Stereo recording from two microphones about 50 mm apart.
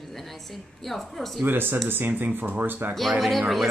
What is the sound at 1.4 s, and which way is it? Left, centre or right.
Speech, right.